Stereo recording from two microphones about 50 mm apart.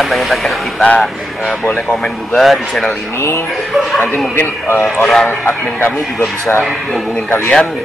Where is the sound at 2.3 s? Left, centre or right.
Centre.